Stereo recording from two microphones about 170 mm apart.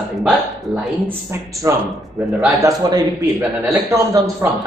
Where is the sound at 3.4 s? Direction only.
5° right (ahead or behind).